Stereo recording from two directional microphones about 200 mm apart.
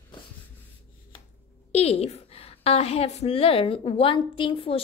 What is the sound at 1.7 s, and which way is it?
A woman's voice, 30° left (ahead or behind).